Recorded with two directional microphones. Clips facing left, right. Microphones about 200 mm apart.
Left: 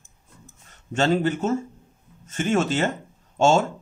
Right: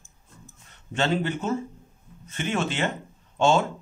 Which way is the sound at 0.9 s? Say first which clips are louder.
Left 4 dB; 45° left (ahead or behind).